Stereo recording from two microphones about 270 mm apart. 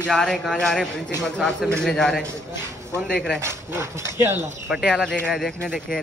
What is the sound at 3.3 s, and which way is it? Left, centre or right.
Speech, centre.